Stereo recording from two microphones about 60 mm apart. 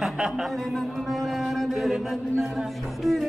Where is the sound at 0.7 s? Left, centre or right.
Centre.